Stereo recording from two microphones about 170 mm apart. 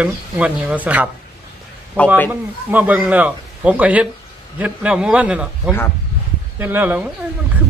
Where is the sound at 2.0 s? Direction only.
10° left (ahead or behind).